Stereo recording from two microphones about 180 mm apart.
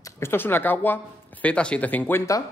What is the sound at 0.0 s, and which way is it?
Speech, 15° left (ahead or behind).